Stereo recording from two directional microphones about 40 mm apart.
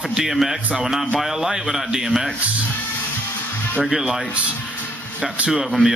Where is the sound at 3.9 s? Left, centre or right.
Centre.